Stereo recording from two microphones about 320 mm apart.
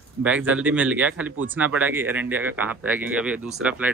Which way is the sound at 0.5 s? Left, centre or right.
Centre.